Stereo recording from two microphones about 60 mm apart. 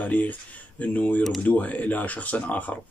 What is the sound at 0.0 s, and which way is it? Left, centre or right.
Speech, left.